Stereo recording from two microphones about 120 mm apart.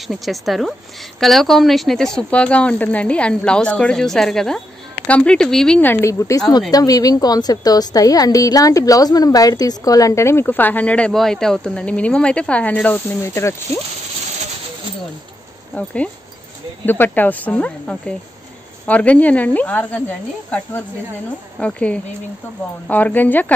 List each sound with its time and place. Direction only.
0.0 s speech: centre (ahead or behind)
5.8 s a woman's voice: 20° left (ahead or behind)
15.7 s speech: 10° left (ahead or behind)